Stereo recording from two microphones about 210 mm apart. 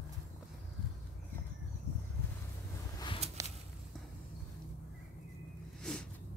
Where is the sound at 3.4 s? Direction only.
15° right (ahead or behind).